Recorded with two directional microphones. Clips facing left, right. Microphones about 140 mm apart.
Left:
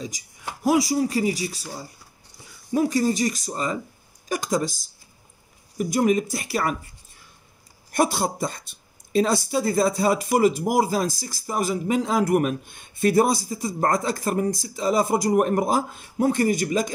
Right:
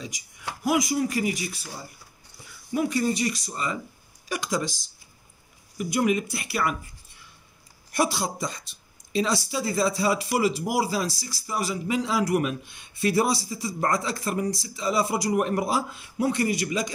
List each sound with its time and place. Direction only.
0.7 s speech: 35° left (ahead or behind)
2.7 s speech: 35° left (ahead or behind)
5.8 s speech: 40° left (ahead or behind)
7.9 s speech: 50° left (ahead or behind)